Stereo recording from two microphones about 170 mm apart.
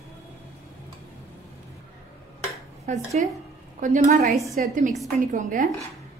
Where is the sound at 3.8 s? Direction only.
55° right (ahead or behind).